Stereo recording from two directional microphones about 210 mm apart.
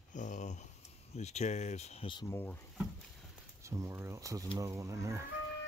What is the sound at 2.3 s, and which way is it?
Speech, 10° left (ahead or behind).